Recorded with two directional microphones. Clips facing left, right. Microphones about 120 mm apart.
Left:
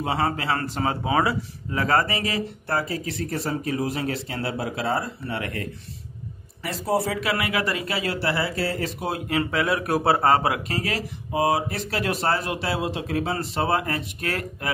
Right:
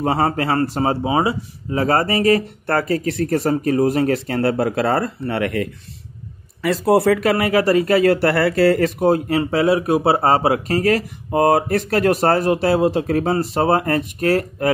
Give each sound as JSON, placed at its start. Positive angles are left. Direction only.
{"t": 0.0, "sound": "speech", "side_deg": -40}
{"t": 1.0, "sound": "speech", "side_deg": -25}
{"t": 7.2, "sound": "speech", "side_deg": -40}
{"t": 9.0, "sound": "speech", "side_deg": -40}
{"t": 10.7, "sound": "speech", "side_deg": -45}